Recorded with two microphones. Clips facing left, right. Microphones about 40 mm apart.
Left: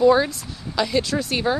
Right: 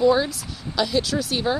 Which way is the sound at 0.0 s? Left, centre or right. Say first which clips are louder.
Left 2 dB; centre.